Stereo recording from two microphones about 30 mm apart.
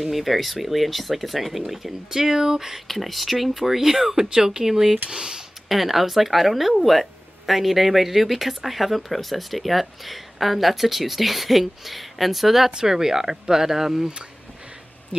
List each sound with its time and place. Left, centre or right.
0.0 s speech: centre
2.9 s speech: centre
5.1 s speech: right
5.7 s speech: centre